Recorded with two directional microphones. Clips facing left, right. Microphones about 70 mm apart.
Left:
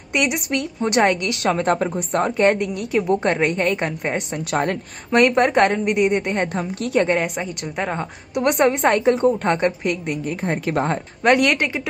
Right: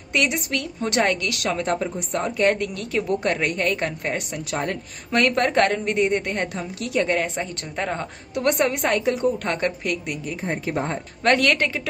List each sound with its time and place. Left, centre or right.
0.1 s a woman's voice: left
1.6 s speech: left
2.6 s a woman's voice: centre
3.2 s a woman's voice: left
4.5 s speech: left
5.1 s a woman's voice: left
7.3 s a woman's voice: centre
8.4 s a woman's voice: left
10.4 s speech: left
11.2 s a woman's voice: centre